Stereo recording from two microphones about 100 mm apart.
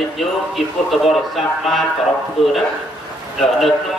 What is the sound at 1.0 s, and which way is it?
Speech, centre (ahead or behind).